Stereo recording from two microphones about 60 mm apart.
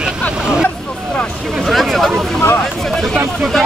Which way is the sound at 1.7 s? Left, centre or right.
Centre.